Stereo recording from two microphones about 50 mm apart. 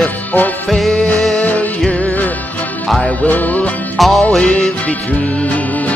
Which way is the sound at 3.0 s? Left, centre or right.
Left.